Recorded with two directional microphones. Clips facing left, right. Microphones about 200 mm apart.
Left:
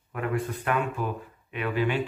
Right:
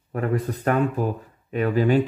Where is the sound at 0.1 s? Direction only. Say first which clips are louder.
Right 4 dB; 40° right (ahead or behind).